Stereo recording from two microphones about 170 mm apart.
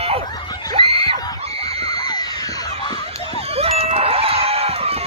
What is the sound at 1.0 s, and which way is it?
Screaming, 20° left (ahead or behind).